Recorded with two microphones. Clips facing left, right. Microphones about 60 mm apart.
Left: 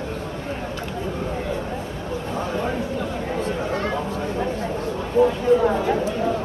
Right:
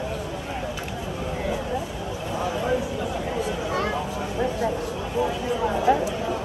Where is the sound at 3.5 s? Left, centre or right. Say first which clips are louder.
Left 2 dB; left.